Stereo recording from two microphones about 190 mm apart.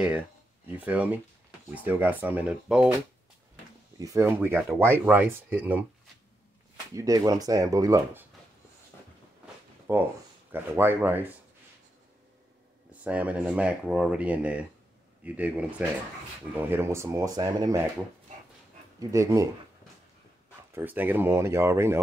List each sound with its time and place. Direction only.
0.7 s speech: 10° right (ahead or behind)
4.0 s speech: 15° right (ahead or behind)
7.0 s speech: 20° right (ahead or behind)
9.9 s speech: 10° right (ahead or behind)
12.9 s speech: 5° right (ahead or behind)
18.9 s speech: 15° right (ahead or behind)
20.7 s speech: 10° right (ahead or behind)